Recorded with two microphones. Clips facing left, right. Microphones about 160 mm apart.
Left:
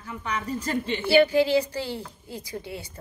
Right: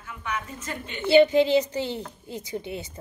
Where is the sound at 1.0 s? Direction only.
20° right (ahead or behind).